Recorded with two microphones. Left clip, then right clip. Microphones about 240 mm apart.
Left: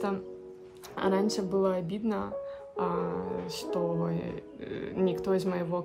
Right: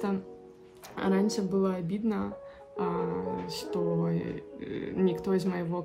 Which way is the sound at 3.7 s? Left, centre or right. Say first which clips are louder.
Even; centre.